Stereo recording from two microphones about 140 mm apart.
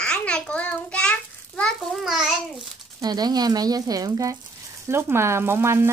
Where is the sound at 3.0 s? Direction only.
30° right (ahead or behind).